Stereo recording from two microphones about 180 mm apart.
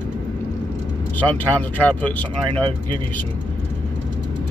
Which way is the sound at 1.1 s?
10° left (ahead or behind).